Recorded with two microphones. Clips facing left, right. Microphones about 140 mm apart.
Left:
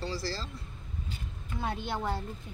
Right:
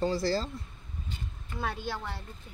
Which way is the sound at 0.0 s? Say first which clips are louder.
Right 7 dB; 55° right (ahead or behind).